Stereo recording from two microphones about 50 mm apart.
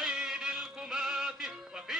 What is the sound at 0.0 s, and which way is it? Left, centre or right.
Music, centre.